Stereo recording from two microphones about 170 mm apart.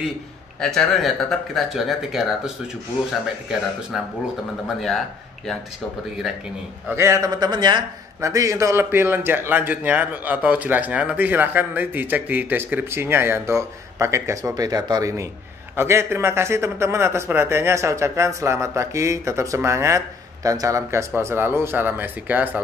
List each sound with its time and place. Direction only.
0.6 s speech: 5° left (ahead or behind)
6.9 s a man's voice: 15° right (ahead or behind)